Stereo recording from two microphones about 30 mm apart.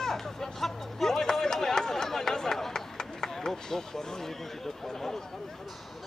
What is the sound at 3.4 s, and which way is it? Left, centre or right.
Speech, centre.